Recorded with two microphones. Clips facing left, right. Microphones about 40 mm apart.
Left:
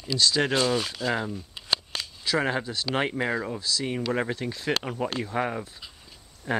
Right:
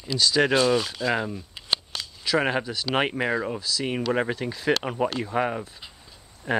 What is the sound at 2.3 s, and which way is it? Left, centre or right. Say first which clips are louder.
Speech: right 3 dB; centre.